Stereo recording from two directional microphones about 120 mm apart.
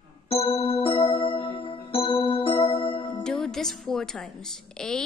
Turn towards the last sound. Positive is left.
turn(degrees=5)  # may be behind; listen again after turning